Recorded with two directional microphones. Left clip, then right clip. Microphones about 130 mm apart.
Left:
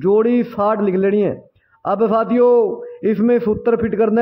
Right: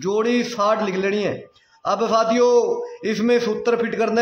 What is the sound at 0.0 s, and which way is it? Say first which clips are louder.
A man's voice: left 5 dB; 50° left (ahead or behind).